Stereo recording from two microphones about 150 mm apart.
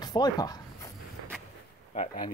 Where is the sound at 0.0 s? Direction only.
25° left (ahead or behind).